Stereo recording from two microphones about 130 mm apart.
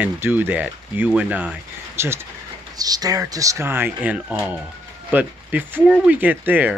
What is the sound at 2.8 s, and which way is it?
Speech, 30° right (ahead or behind).